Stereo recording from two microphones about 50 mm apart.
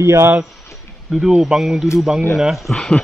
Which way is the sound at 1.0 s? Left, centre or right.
Centre.